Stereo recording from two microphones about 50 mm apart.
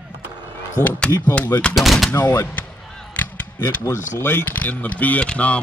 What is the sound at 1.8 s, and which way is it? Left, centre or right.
Speech, centre.